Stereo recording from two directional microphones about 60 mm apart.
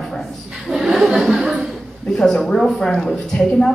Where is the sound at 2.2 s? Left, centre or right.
Centre.